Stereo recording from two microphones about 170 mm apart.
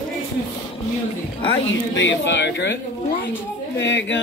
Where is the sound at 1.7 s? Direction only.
90° left.